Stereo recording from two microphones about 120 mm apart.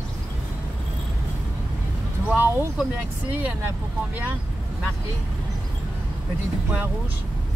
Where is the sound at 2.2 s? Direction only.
15° right (ahead or behind).